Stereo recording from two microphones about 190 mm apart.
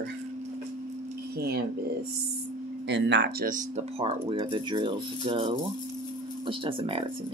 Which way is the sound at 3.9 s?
30° right (ahead or behind).